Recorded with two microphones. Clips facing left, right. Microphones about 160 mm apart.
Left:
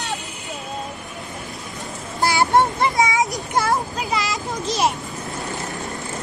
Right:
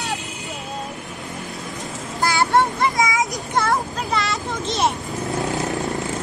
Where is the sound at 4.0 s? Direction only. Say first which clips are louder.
Even; 5° left (ahead or behind).